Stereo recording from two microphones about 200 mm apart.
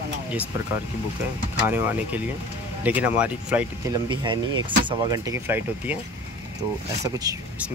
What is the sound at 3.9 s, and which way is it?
Speech, 20° right (ahead or behind).